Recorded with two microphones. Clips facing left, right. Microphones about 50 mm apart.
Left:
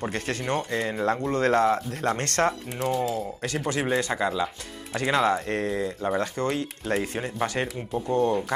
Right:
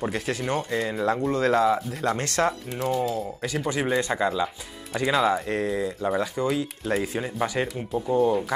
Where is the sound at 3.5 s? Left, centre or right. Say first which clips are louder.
Right 1 dB; left.